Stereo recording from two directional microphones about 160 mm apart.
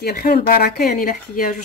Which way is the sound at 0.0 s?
70° left (ahead or behind).